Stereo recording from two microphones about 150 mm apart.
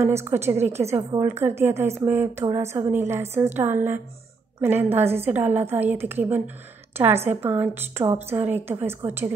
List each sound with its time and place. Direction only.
0.0 s a woman's voice: 15° right (ahead or behind)